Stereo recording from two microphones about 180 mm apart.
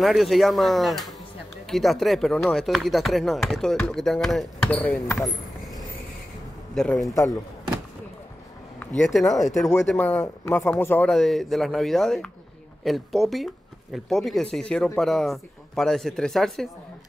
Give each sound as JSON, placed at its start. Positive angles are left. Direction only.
{"t": 0.0, "sound": "speech", "side_deg": 0}
{"t": 6.7, "sound": "a man's voice", "side_deg": 0}
{"t": 8.7, "sound": "speech", "side_deg": 5}